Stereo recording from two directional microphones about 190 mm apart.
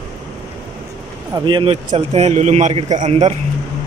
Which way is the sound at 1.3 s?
25° right (ahead or behind).